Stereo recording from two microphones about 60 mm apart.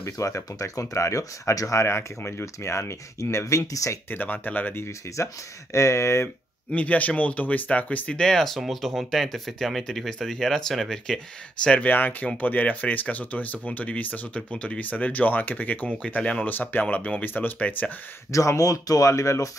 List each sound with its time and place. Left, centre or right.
0.0 s speech: left
4.1 s speech: left
5.1 s speech: left
6.7 s speech: left
8.2 s speech: centre
11.6 s speech: centre
11.9 s speech: left
16.2 s speech: centre
16.4 s speech: left
16.8 s speech: centre
18.3 s speech: left